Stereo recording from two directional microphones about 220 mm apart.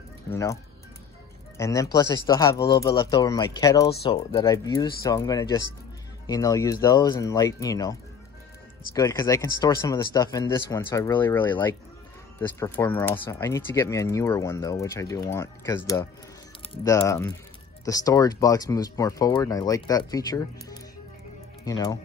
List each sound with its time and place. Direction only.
0.3 s speech: 15° left (ahead or behind)
1.6 s speech: 15° left (ahead or behind)